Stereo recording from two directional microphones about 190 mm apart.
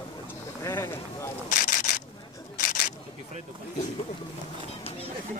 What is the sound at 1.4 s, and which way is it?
Single-lens reflex camera, 45° left (ahead or behind).